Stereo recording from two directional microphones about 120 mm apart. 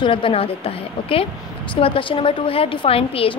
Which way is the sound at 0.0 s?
45° left (ahead or behind).